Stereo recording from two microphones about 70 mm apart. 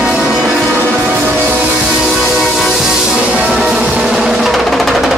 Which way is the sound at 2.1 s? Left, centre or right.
Centre.